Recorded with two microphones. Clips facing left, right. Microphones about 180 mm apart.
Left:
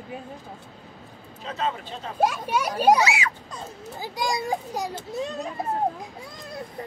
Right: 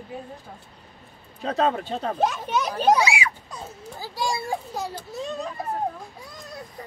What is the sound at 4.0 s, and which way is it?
A child's voice, 15° left (ahead or behind).